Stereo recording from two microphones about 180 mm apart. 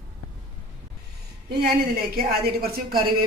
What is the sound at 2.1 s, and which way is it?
Speech, 55° right (ahead or behind).